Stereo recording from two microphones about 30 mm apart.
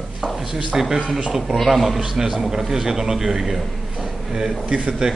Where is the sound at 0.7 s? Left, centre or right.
Centre.